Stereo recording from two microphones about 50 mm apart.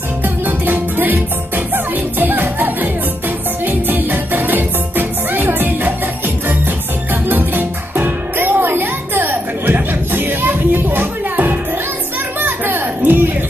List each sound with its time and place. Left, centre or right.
0.2 s music: right